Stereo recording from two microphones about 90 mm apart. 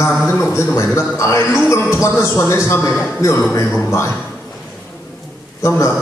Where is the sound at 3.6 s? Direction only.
15° left (ahead or behind).